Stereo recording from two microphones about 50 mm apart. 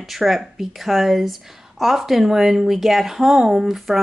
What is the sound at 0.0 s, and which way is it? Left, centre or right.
Speech, centre.